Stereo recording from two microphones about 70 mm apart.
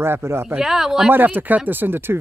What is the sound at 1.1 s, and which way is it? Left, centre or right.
Speech, right.